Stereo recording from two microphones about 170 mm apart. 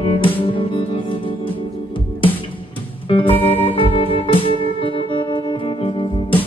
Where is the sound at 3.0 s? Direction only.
30° left (ahead or behind).